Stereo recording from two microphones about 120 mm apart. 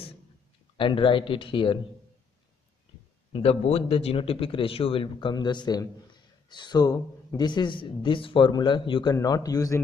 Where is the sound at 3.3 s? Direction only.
55° left (ahead or behind); by 9.8 s 30° left (ahead or behind).